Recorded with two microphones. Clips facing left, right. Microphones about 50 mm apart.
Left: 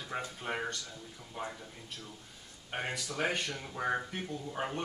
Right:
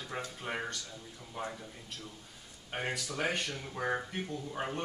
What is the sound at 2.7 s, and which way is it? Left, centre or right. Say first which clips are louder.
Speech: right 1 dB; centre.